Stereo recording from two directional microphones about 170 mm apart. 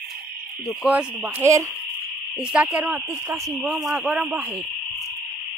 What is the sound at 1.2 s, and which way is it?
Speech, 15° right (ahead or behind).